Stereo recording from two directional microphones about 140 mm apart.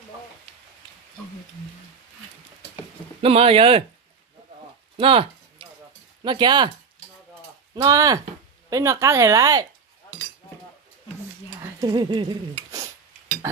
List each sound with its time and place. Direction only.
3.2 s speech: 40° right (ahead or behind)
4.9 s a sound: 40° right (ahead or behind)
6.2 s speech: 30° right (ahead or behind)
7.7 s speech: 25° right (ahead or behind)
11.8 s stir: 30° right (ahead or behind)